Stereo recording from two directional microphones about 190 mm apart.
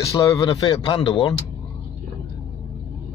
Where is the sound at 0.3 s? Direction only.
20° left (ahead or behind).